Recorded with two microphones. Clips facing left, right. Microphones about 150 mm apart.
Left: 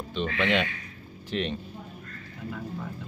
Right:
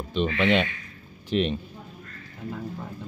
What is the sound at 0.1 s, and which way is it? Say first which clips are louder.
A man's voice: right 4 dB; 20° right (ahead or behind).